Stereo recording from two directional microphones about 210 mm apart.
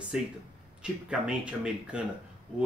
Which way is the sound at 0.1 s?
5° right (ahead or behind).